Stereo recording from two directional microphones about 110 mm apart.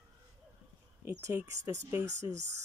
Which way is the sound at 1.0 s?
25° right (ahead or behind).